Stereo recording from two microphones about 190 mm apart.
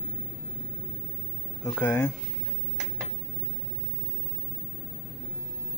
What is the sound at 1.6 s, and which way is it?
Speech, 10° left (ahead or behind).